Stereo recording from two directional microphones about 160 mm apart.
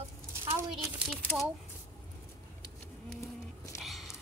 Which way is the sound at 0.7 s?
Centre (ahead or behind).